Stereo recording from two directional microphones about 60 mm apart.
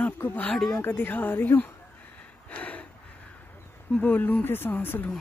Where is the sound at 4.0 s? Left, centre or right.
Left.